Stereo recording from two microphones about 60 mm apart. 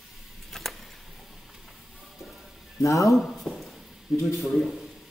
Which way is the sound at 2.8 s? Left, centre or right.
Left.